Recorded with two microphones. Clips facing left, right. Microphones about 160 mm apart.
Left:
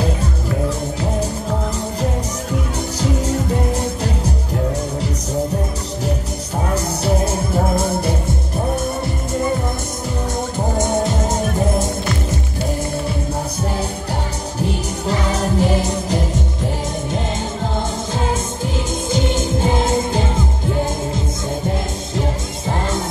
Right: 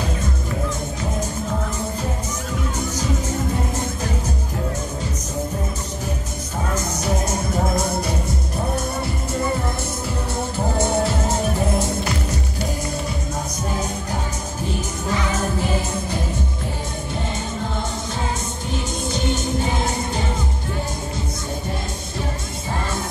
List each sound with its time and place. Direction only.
7.9 s music: 25° left (ahead or behind)
10.8 s music: 20° left (ahead or behind)
15.0 s music: 35° left (ahead or behind)
19.1 s music: 90° left